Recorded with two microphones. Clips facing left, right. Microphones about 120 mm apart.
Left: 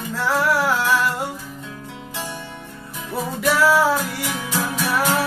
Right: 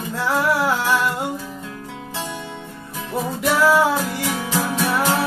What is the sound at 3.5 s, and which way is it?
Music, centre (ahead or behind).